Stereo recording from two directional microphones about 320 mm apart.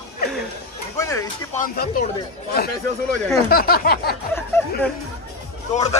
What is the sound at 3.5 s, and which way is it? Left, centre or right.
Speech, left.